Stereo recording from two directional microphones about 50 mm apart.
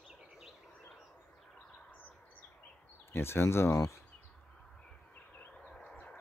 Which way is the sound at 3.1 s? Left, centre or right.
Left.